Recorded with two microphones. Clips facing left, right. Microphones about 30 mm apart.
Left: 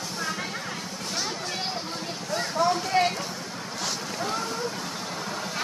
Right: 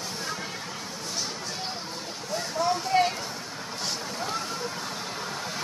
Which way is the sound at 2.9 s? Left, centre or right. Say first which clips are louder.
Right 1 dB; centre.